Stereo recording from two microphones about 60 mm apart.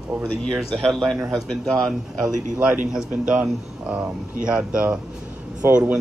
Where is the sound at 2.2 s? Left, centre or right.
Right.